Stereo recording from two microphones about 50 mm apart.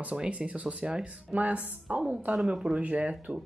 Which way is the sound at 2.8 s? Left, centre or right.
Right.